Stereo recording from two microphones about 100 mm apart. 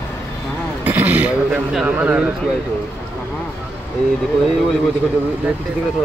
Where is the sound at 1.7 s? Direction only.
15° right (ahead or behind).